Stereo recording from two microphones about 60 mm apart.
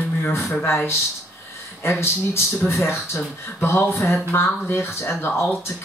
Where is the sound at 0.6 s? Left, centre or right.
Left.